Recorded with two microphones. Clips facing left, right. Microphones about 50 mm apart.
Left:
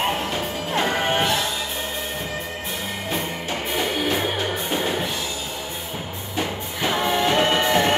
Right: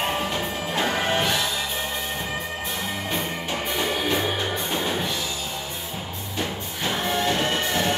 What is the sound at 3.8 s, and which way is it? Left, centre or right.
Music, centre.